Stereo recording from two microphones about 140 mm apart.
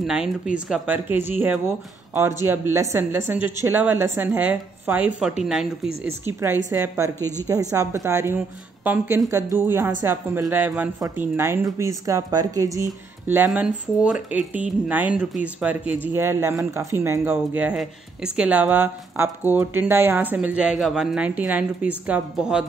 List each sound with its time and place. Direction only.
0.0 s speech: 5° right (ahead or behind)
6.2 s speech: 15° right (ahead or behind)
7.2 s a woman's voice: 15° left (ahead or behind)
7.7 s a woman's voice: 20° right (ahead or behind)
13.5 s speech: 5° right (ahead or behind)